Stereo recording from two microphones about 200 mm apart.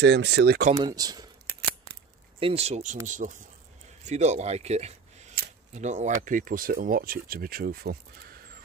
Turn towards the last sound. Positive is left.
turn(degrees=-50)  # may be behind; listen again after turning